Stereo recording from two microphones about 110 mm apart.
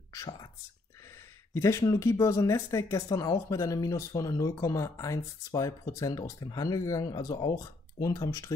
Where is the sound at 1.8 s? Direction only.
30° left (ahead or behind).